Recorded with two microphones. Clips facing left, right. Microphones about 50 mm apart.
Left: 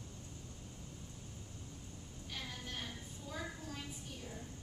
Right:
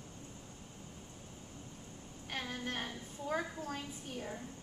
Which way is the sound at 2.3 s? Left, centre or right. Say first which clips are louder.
Right 7 dB; right.